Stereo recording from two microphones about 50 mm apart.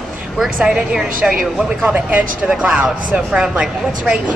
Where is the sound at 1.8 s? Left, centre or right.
Right.